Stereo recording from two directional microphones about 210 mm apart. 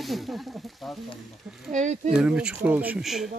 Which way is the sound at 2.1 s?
5° right (ahead or behind).